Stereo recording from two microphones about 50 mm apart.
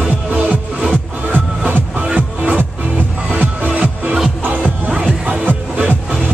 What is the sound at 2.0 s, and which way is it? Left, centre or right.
Music, centre.